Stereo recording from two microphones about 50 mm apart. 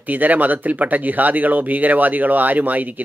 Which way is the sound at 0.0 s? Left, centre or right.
Right.